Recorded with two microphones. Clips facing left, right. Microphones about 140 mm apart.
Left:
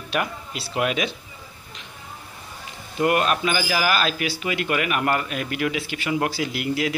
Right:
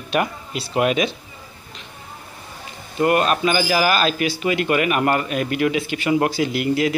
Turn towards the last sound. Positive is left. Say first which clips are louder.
# right 5 dB
turn(degrees=5)  # may be behind; listen again after turning